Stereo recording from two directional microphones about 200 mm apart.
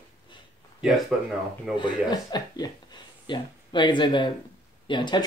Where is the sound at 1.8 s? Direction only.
20° left (ahead or behind).